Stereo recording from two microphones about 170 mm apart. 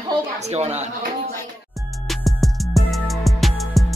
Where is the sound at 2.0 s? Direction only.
Centre (ahead or behind).